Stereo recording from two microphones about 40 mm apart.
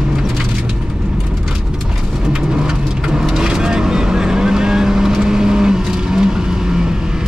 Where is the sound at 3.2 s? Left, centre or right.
Centre.